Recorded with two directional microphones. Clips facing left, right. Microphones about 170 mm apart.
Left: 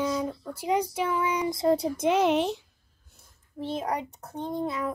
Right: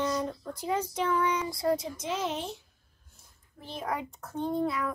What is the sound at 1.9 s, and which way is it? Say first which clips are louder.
Speech: left 10 dB; 65° left (ahead or behind).